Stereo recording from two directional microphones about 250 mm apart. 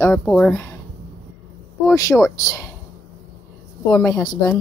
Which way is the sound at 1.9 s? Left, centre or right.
Centre.